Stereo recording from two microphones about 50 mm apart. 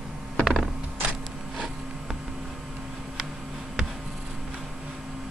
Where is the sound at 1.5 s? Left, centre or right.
Centre.